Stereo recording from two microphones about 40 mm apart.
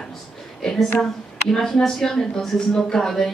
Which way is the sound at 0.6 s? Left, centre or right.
Centre.